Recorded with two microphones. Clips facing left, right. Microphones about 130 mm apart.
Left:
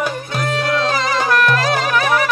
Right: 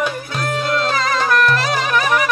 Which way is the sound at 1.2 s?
10° left (ahead or behind).